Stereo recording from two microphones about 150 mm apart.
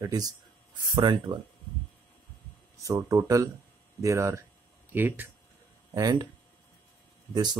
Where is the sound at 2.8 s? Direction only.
20° right (ahead or behind).